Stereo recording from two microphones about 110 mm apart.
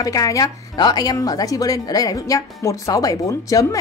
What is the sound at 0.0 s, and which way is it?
A woman's voice, 30° left (ahead or behind).